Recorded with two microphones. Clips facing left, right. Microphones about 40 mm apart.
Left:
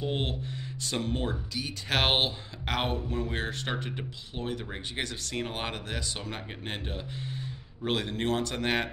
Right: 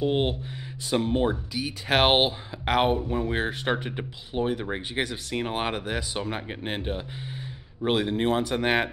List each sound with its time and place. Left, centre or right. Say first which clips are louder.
0.0 s speech: right 7 dB; centre